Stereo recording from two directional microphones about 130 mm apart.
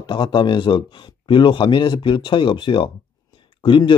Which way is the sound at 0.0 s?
35° left (ahead or behind).